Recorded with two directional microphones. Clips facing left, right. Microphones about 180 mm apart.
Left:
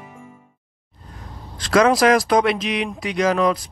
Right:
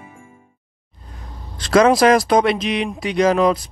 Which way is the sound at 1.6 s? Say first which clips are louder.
Right 2 dB; 25° right (ahead or behind).